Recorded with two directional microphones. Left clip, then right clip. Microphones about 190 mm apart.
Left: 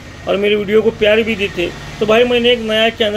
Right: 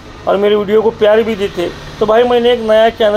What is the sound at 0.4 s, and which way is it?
Speech, 35° right (ahead or behind).